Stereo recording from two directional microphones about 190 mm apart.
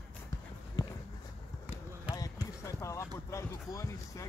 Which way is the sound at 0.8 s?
20° left (ahead or behind).